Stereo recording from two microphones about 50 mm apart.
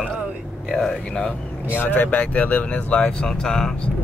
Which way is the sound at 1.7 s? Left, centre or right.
Left.